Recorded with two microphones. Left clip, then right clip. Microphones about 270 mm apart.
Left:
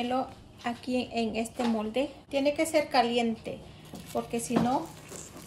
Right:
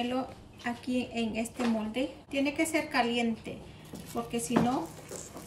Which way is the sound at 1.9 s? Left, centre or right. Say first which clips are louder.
Left 3 dB; right.